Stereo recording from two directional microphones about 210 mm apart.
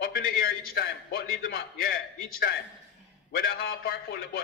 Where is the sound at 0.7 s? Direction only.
45° left (ahead or behind).